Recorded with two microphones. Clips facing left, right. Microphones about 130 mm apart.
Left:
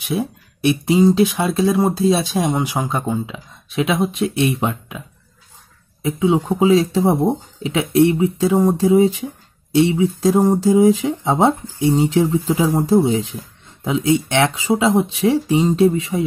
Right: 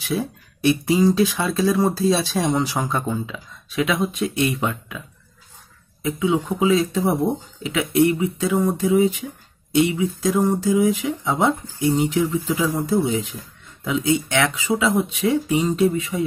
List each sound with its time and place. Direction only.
0.0 s speech: 20° left (ahead or behind)
6.0 s speech: 30° left (ahead or behind)